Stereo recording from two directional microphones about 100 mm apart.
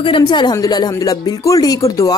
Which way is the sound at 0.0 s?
55° left (ahead or behind).